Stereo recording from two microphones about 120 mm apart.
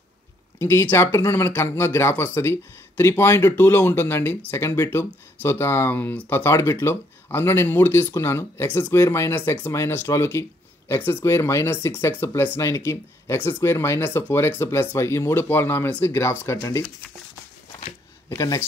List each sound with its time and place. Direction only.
0.6 s speech: 20° left (ahead or behind)
18.3 s speech: 25° left (ahead or behind)